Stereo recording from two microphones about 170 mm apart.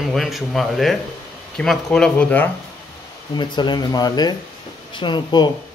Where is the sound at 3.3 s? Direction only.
25° left (ahead or behind).